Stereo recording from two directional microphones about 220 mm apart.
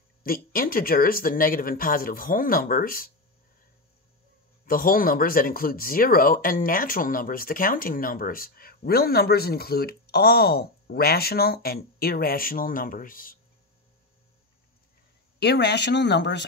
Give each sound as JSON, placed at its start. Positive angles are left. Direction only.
{"t": 0.2, "sound": "speech", "side_deg": 40}
{"t": 4.6, "sound": "speech", "side_deg": 40}
{"t": 15.3, "sound": "speech", "side_deg": 50}